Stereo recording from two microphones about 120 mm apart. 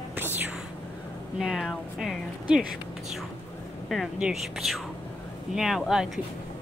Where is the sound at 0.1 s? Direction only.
15° right (ahead or behind).